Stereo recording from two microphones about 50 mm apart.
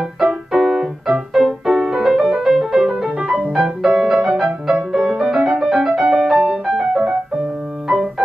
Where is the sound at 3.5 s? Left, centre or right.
Centre.